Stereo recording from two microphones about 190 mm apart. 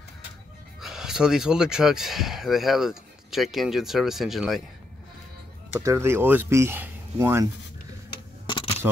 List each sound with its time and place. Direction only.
0.7 s speech: centre (ahead or behind)
5.8 s speech: 15° right (ahead or behind)
8.5 s a sound: 25° left (ahead or behind)